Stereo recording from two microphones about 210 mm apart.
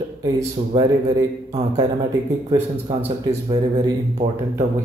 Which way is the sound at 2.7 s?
10° left (ahead or behind).